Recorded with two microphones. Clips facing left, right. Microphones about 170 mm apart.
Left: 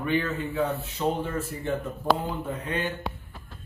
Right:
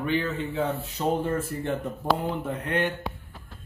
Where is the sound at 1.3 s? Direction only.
55° right (ahead or behind).